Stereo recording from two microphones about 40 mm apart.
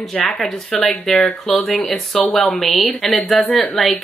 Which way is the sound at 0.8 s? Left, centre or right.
Centre.